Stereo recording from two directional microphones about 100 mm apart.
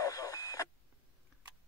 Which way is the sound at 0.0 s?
40° left (ahead or behind).